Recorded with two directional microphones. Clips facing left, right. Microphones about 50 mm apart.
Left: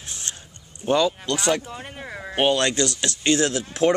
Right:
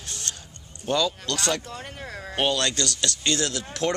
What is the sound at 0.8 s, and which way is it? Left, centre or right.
Speech, left.